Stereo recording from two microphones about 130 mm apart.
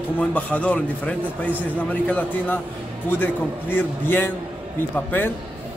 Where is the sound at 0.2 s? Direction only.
10° left (ahead or behind).